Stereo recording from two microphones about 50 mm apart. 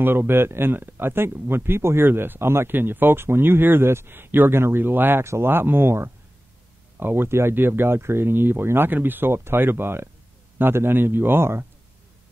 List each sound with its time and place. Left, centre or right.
0.0 s speech: right
2.0 s speech: right
5.2 s speech: right
5.5 s speech: right